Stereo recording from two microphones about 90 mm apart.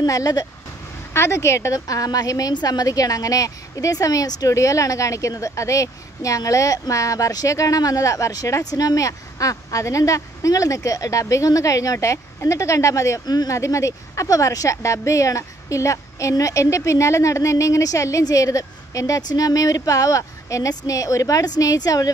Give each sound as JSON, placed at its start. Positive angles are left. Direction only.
{"t": 0.0, "sound": "a woman's voice", "side_deg": 40}
{"t": 1.1, "sound": "a woman's voice", "side_deg": 30}